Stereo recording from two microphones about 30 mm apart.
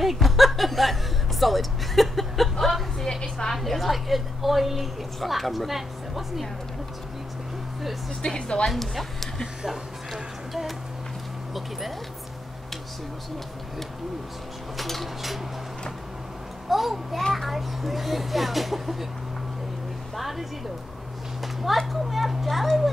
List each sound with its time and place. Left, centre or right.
0.0 s chuckle: centre
1.4 s vehicle: centre
2.6 s a sound: centre
3.5 s a woman's voice: centre
5.4 s speech: centre
5.7 s a woman's voice: centre
8.4 s speech: left
8.6 s speech: centre
14.8 s a woman's voice: centre
16.6 s a woman's voice: centre
20.2 s a woman's voice: centre
21.5 s a woman's voice: centre